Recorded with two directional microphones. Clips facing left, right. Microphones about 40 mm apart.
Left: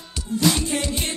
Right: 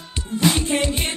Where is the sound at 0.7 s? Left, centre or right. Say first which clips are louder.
Right 4 dB; right.